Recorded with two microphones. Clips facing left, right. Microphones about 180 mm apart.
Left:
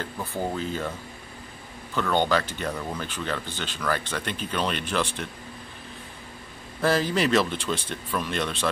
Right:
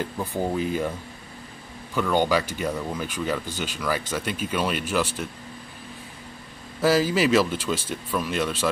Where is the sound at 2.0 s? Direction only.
10° right (ahead or behind).